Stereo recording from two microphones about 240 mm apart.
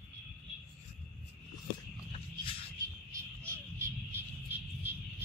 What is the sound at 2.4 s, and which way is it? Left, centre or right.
Music, centre.